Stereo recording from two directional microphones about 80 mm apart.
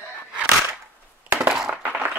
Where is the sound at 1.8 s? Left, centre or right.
Right.